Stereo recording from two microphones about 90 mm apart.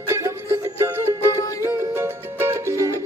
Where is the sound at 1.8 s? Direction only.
30° right (ahead or behind).